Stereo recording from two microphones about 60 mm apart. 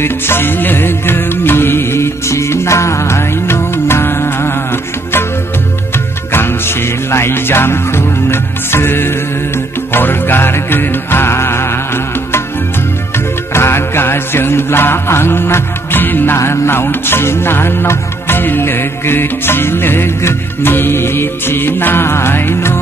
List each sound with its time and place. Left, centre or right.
0.0 s music: left
6.3 s music: left
13.5 s music: left
16.4 s music: left